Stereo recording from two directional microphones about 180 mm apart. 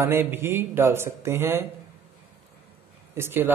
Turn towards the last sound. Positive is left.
turn(degrees=-10)  # may be behind; listen again after turning